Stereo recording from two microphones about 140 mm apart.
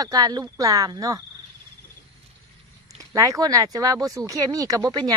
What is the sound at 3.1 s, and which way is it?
Speech, 25° right (ahead or behind).